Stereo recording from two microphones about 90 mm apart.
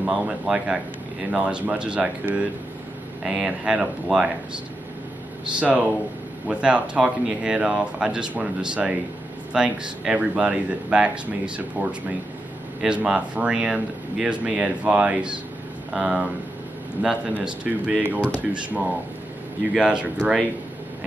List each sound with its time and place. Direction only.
0.0 s speech: 10° right (ahead or behind)
5.6 s speech: 15° right (ahead or behind)